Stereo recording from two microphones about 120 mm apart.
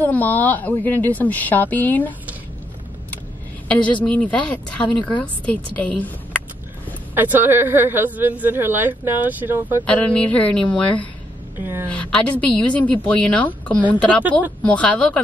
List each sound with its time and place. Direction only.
0.0 s a woman's voice: 15° left (ahead or behind)
3.6 s a woman's voice: 10° left (ahead or behind)
7.2 s speech: 15° right (ahead or behind)
9.8 s a woman's voice: 10° left (ahead or behind)
11.6 s speech: 15° right (ahead or behind)
11.9 s a woman's voice: 10° left (ahead or behind)